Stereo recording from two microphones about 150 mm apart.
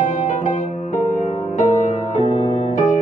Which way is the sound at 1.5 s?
55° left (ahead or behind).